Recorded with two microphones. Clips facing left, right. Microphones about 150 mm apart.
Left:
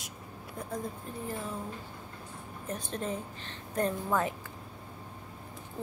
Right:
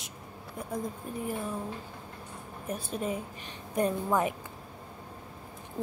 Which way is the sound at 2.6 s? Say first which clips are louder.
Right 2 dB; 10° right (ahead or behind).